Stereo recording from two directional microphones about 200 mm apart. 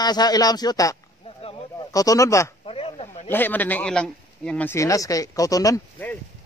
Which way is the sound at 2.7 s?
30° left (ahead or behind).